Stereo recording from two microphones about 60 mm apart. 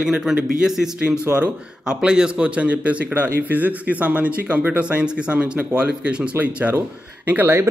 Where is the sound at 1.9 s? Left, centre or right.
Centre.